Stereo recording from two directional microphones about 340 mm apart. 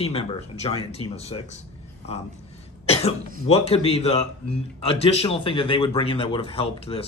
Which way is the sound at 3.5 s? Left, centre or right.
Centre.